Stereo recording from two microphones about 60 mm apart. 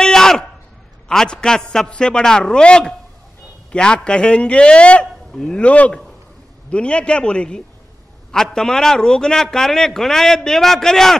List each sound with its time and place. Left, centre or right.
0.0 s a sound: centre
1.0 s a man's voice: centre
5.6 s a man's voice: left